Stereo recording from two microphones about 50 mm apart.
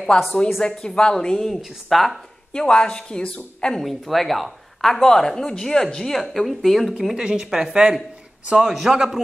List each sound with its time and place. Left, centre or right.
0.1 s speech: centre
1.5 s speech: centre
2.5 s speech: centre
3.8 s speech: centre
5.0 s a man's voice: centre